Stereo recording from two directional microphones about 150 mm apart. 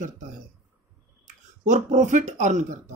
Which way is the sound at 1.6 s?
55° right (ahead or behind).